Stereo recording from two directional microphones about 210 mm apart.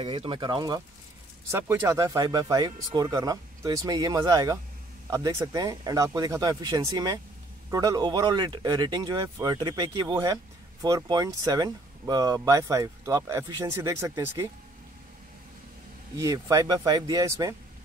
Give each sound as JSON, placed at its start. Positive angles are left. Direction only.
{"t": 0.0, "sound": "speech", "side_deg": -25}
{"t": 16.2, "sound": "speech", "side_deg": -15}